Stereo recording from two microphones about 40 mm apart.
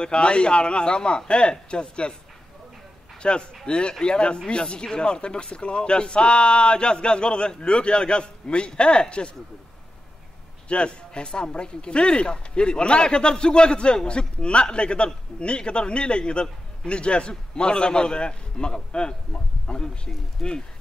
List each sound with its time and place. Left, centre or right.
0.0 s a man's voice: left
3.2 s a man's voice: left
10.7 s a man's voice: left
20.4 s speech: centre